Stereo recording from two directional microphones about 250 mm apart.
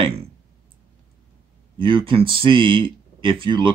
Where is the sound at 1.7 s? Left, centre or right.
Centre.